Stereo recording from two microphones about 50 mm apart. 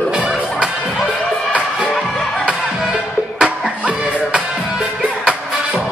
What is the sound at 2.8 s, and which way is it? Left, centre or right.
Music, centre.